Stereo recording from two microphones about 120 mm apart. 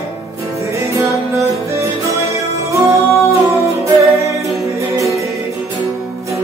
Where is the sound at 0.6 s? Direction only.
25° right (ahead or behind).